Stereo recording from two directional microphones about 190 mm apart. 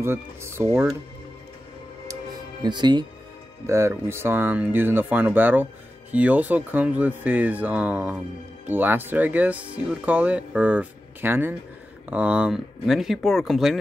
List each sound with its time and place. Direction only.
0.0 s speech: 15° right (ahead or behind)
2.6 s speech: 20° right (ahead or behind); by 13.7 s centre (ahead or behind)